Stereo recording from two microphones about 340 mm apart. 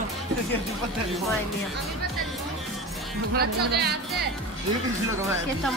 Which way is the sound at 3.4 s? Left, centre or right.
Right.